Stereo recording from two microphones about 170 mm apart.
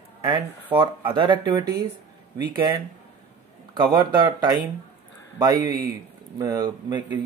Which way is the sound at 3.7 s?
25° right (ahead or behind).